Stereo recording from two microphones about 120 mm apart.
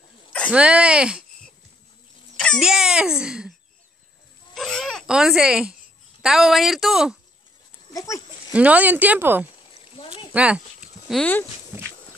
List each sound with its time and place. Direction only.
0.5 s speech: 10° right (ahead or behind)
2.3 s a sound: 5° left (ahead or behind)
2.6 s speech: 5° right (ahead or behind)
4.6 s a child's voice: centre (ahead or behind)
7.9 s goat: 30° left (ahead or behind)
8.5 s speech: 10° right (ahead or behind)
9.9 s a sound: 50° left (ahead or behind)
10.3 s a sound: 10° right (ahead or behind)
11.1 s speech: 15° left (ahead or behind)